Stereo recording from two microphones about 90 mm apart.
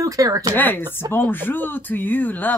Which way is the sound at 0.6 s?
20° left (ahead or behind).